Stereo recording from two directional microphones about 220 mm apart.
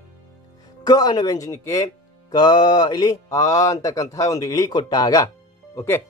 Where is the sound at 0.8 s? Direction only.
20° left (ahead or behind).